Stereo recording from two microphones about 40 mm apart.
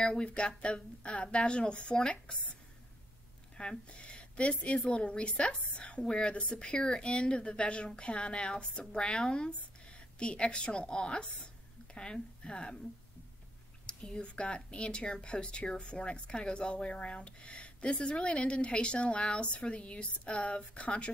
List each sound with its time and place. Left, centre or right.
0.0 s a woman's voice: left
3.5 s a woman's voice: left
13.8 s a woman's voice: left